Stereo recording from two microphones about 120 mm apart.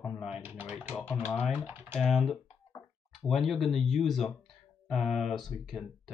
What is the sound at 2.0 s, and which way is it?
Speech, centre (ahead or behind).